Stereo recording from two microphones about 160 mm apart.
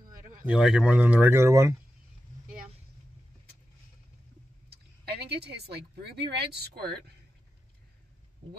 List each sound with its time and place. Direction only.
0.5 s speech: 5° right (ahead or behind)
4.6 s speech: 90° right